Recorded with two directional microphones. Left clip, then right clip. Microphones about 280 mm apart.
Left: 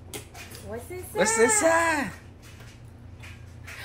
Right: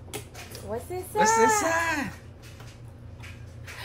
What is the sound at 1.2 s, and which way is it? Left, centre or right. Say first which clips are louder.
Speech: right 1 dB; centre.